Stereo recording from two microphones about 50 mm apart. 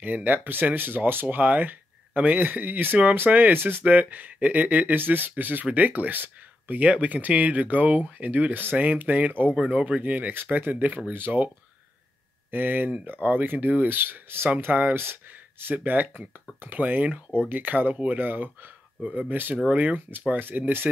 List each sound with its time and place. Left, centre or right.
0.0 s speech: right
9.6 s speech: right
12.4 s speech: right
15.7 s speech: right